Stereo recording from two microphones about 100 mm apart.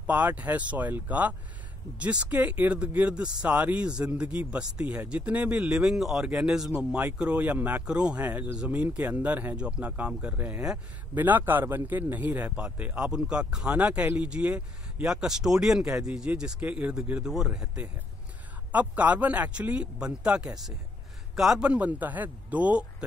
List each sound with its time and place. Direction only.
0.0 s speech: 15° right (ahead or behind)